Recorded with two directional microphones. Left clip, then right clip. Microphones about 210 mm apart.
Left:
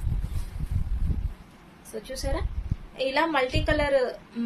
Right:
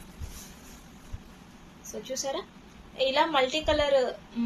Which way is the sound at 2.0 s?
25° left (ahead or behind).